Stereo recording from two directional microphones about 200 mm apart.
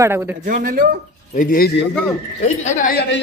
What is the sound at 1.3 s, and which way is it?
A man's voice, 45° left (ahead or behind).